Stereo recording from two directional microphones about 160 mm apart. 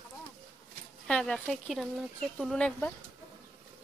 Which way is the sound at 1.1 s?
5° left (ahead or behind).